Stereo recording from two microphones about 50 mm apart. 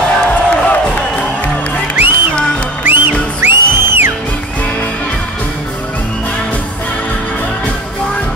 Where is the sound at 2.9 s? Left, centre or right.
Right.